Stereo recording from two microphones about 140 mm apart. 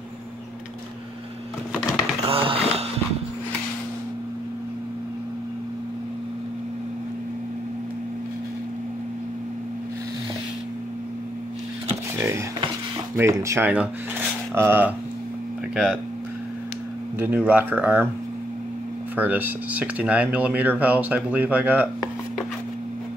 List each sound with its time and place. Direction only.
2.2 s a sound: 45° right (ahead or behind)
13.1 s speech: 20° right (ahead or behind)
17.2 s speech: 10° right (ahead or behind)
19.1 s speech: 10° right (ahead or behind)